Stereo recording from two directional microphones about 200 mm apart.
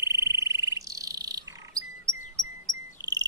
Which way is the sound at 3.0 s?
20° right (ahead or behind).